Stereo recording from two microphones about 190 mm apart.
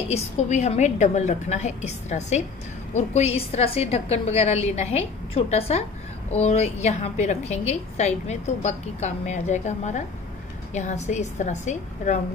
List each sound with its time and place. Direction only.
0.1 s a woman's voice: 35° left (ahead or behind)